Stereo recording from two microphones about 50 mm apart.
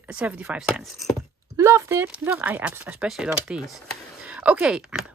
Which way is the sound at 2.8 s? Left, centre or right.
Right.